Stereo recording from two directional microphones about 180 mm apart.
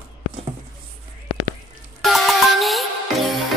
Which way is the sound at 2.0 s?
Centre (ahead or behind).